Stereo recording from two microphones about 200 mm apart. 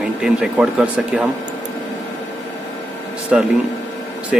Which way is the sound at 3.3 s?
5° right (ahead or behind).